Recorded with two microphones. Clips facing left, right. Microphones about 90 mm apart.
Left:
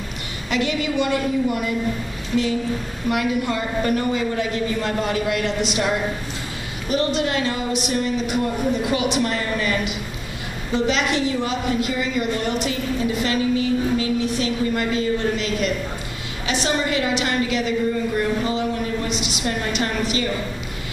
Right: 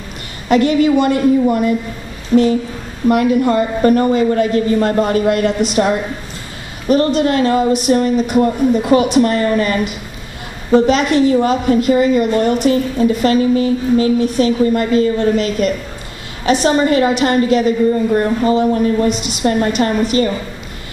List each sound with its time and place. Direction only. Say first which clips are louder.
0.5 s a woman's voice: right 11 dB; 45° right (ahead or behind)